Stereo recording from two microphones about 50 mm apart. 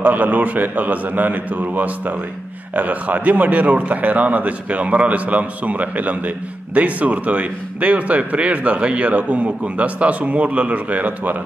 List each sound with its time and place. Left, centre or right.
0.0 s a man's voice: right